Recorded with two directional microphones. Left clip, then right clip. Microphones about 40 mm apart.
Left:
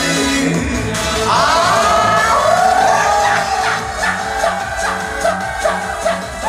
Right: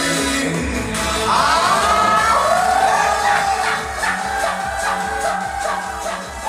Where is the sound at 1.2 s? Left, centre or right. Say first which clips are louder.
Left 3 dB; centre.